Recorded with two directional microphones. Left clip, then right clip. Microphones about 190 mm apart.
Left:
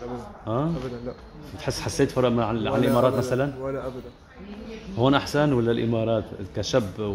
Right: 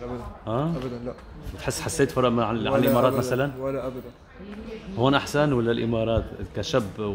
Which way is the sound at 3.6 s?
15° right (ahead or behind).